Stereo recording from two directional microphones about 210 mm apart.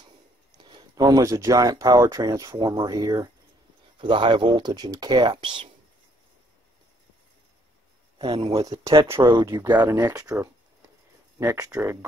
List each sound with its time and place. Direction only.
0.5 s speech: 20° right (ahead or behind)
8.2 s speech: 25° right (ahead or behind)